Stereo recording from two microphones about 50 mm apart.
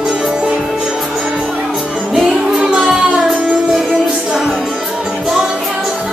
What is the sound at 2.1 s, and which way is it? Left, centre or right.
Music, centre.